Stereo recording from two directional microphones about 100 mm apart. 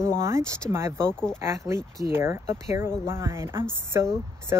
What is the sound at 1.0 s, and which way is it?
Speech, 10° left (ahead or behind).